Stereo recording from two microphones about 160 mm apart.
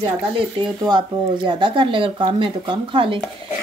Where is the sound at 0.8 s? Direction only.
30° right (ahead or behind).